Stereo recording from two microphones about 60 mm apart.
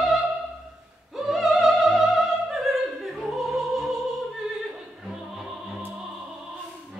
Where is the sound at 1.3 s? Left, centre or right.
Centre.